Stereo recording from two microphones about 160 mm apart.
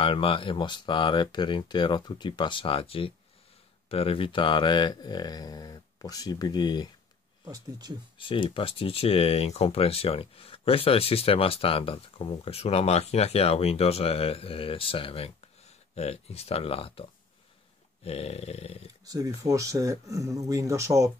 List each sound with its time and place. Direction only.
0.0 s speech: 35° left (ahead or behind)
7.4 s speech: 20° right (ahead or behind)
8.2 s speech: 30° left (ahead or behind)
19.0 s speech: 20° right (ahead or behind)